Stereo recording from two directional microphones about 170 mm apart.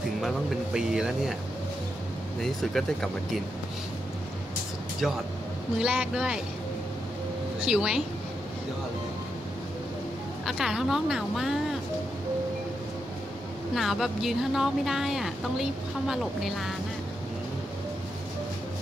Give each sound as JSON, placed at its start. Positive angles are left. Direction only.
{"t": 0.7, "sound": "speech", "side_deg": -5}
{"t": 2.4, "sound": "speech", "side_deg": 0}
{"t": 5.0, "sound": "speech", "side_deg": 0}
{"t": 7.6, "sound": "speech", "side_deg": -5}
{"t": 10.4, "sound": "speech", "side_deg": 0}
{"t": 13.7, "sound": "speech", "side_deg": 0}